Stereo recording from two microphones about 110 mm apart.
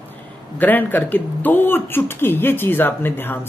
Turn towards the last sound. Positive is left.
turn(degrees=20)  # may be behind; listen again after turning